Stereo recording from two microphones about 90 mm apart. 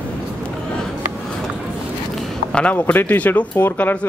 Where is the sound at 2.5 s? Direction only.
15° left (ahead or behind).